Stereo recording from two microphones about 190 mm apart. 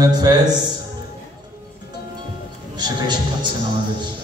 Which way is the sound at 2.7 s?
25° right (ahead or behind).